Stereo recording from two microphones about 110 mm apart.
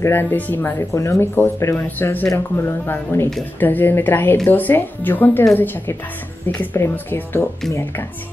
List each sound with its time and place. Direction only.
0.0 s speech: 20° left (ahead or behind)